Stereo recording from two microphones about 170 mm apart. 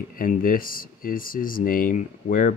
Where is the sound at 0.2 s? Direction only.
55° left (ahead or behind).